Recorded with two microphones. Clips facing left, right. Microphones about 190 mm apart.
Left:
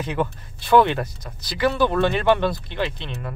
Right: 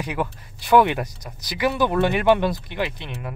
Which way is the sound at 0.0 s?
10° right (ahead or behind).